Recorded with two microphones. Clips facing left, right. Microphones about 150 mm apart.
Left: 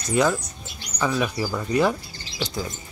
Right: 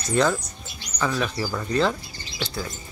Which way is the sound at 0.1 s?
10° left (ahead or behind).